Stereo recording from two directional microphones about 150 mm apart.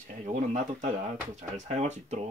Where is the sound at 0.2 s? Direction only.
50° right (ahead or behind).